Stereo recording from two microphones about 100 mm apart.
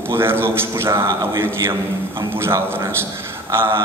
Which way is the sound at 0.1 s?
25° right (ahead or behind).